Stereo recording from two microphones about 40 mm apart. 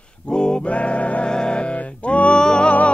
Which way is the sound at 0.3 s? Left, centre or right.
Left.